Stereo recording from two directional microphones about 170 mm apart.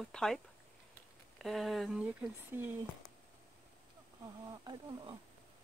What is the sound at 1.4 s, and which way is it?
Speech, centre (ahead or behind).